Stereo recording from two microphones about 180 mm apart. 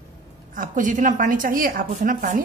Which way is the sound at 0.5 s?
45° right (ahead or behind).